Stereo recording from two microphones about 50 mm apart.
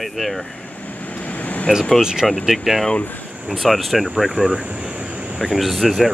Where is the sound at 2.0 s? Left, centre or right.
Centre.